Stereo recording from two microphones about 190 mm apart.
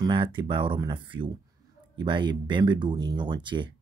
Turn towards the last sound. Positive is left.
turn(degrees=-25)  # may be behind; listen again after turning